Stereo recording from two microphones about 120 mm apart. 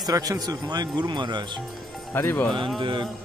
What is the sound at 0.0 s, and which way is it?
Speech, 30° right (ahead or behind).